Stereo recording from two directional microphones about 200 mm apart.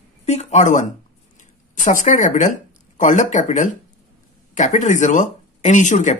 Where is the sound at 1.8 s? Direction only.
40° left (ahead or behind).